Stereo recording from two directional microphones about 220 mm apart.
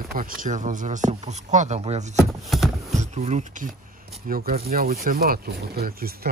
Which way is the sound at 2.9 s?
30° right (ahead or behind).